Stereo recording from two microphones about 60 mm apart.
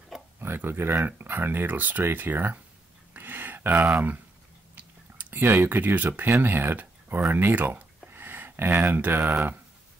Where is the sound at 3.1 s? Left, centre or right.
Right.